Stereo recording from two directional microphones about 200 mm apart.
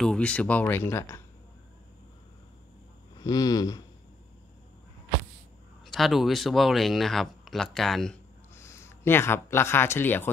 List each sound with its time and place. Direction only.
0.0 s speech: 5° left (ahead or behind)
3.2 s a sound: 20° left (ahead or behind)
5.9 s speech: centre (ahead or behind)
8.5 s speech: 15° left (ahead or behind)